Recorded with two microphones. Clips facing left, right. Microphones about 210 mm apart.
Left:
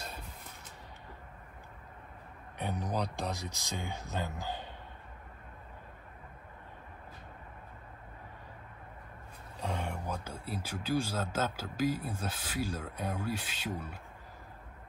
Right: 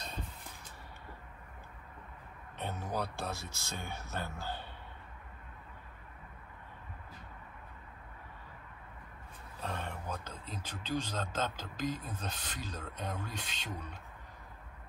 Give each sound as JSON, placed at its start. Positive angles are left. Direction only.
{"t": 2.6, "sound": "speech", "side_deg": 15}
{"t": 9.6, "sound": "speech", "side_deg": 15}